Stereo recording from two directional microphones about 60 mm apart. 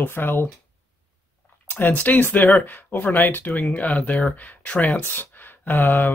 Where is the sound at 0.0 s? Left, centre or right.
Left.